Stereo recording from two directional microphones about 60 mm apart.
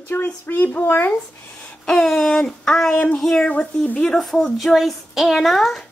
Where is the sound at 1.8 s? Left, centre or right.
Centre.